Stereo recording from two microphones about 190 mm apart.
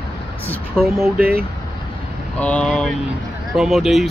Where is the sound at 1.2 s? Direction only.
55° right (ahead or behind).